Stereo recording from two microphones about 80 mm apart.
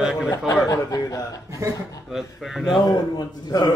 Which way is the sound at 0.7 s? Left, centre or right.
Left.